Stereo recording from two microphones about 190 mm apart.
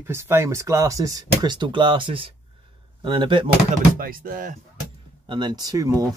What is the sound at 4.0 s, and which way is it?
Speech, 50° right (ahead or behind).